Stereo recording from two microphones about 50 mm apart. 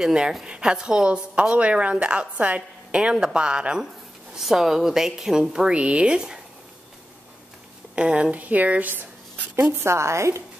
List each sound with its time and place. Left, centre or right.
0.0 s a woman's voice: centre
4.4 s a woman's voice: centre
7.9 s speech: right
8.3 s a woman's voice: right
9.8 s a woman's voice: right